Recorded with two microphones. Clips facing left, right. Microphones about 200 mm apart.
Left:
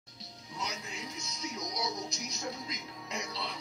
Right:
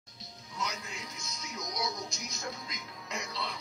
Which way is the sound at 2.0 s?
35° left (ahead or behind).